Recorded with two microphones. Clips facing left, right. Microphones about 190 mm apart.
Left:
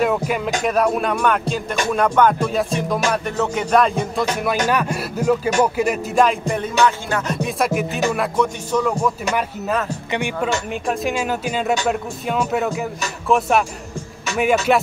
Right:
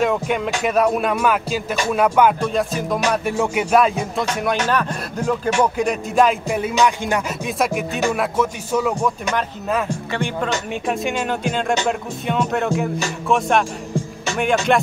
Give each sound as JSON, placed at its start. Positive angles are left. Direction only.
{"t": 0.0, "sound": "music", "side_deg": 5}
{"t": 0.7, "sound": "speech", "side_deg": 0}
{"t": 4.6, "sound": "music", "side_deg": 10}
{"t": 5.6, "sound": "speech", "side_deg": 5}
{"t": 6.8, "sound": "music", "side_deg": -15}
{"t": 7.4, "sound": "speech", "side_deg": 0}
{"t": 10.1, "sound": "music", "side_deg": 10}
{"t": 10.7, "sound": "speech", "side_deg": 0}